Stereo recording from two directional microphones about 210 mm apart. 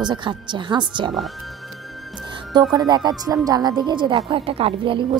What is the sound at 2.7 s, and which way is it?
A woman's voice, 20° right (ahead or behind).